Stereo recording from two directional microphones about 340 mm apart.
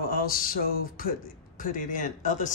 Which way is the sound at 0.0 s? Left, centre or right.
Left.